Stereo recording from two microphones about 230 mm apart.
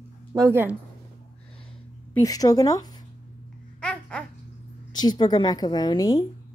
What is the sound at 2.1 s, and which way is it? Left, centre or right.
Speech, centre.